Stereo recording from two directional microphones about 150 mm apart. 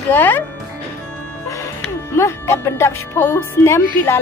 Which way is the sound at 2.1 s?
20° left (ahead or behind).